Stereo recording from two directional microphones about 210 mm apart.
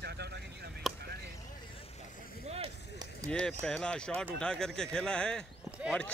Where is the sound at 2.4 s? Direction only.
30° right (ahead or behind).